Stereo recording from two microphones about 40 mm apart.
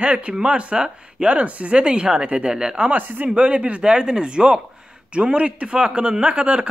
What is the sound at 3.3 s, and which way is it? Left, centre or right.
Speech, right.